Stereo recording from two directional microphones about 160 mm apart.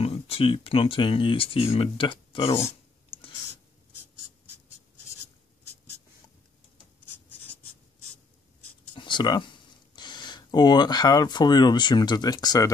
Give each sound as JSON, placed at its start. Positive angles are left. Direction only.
{"t": 0.0, "sound": "speech", "side_deg": 35}
{"t": 3.1, "sound": "a sound", "side_deg": 35}
{"t": 8.9, "sound": "speech", "side_deg": 30}